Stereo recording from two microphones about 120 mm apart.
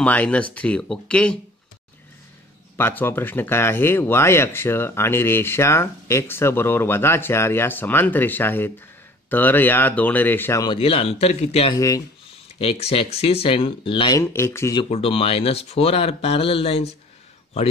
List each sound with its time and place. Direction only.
0.0 s speech: 10° left (ahead or behind)
2.8 s speech: 15° left (ahead or behind)
10.8 s speech: 55° left (ahead or behind)
11.7 s speech: 30° left (ahead or behind)
12.5 s speech: 55° left (ahead or behind)
14.2 s speech: 20° left (ahead or behind)
14.9 s speech: 50° left (ahead or behind)